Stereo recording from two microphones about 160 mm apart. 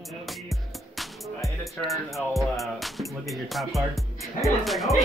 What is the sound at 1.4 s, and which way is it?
Music, centre (ahead or behind).